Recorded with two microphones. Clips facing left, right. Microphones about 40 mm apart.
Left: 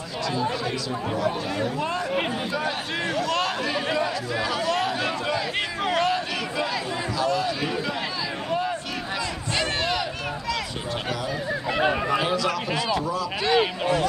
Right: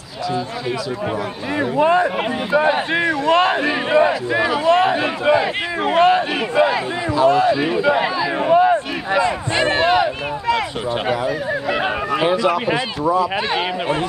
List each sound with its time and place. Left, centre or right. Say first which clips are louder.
1.6 s a man's voice: right 14 dB; right
11.1 s a sound: right 7 dB; right
12.2 s a man's voice: right 7 dB; right